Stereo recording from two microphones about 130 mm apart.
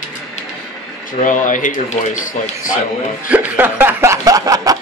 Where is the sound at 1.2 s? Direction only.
85° left.